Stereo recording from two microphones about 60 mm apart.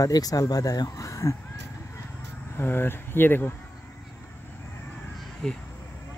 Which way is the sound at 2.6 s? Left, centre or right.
Left.